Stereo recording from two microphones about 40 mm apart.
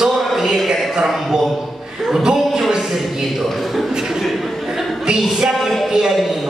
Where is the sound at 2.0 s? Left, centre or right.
Centre.